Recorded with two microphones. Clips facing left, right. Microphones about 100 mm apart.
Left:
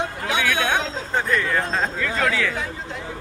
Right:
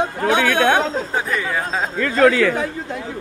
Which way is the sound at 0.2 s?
50° right (ahead or behind).